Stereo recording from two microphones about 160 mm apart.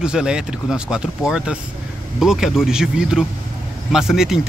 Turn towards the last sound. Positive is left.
turn(degrees=-5)  # may be behind; listen again after turning